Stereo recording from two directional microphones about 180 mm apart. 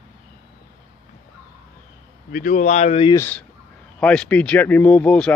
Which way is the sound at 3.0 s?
15° left (ahead or behind).